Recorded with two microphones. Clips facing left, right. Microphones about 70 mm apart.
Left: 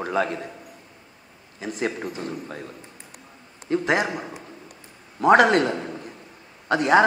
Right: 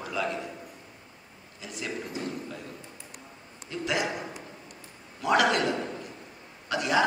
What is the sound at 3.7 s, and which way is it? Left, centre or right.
Speech, left.